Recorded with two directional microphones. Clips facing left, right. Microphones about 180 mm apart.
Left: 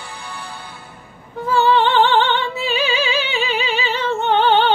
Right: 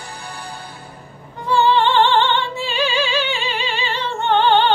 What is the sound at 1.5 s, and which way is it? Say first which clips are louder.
Music: even; 5° left (ahead or behind).